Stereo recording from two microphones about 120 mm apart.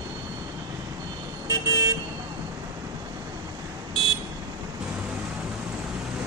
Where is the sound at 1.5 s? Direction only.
30° right (ahead or behind).